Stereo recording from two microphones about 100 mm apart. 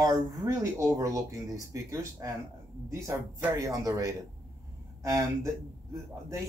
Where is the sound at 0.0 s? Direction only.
35° right (ahead or behind).